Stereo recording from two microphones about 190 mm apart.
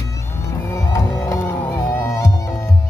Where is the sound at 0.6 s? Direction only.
15° left (ahead or behind).